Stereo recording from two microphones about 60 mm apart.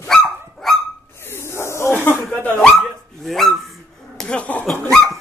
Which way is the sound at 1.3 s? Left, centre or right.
Left.